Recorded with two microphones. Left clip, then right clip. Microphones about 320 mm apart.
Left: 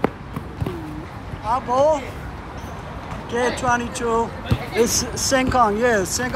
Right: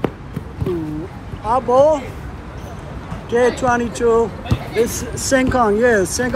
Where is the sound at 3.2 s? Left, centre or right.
Centre.